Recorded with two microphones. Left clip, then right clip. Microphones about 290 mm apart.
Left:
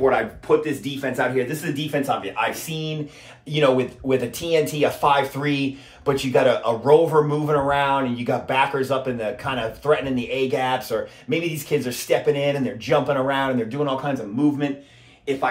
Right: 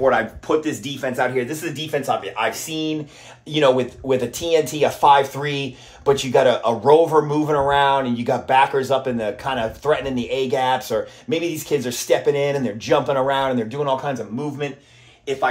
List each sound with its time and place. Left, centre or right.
0.0 s speech: right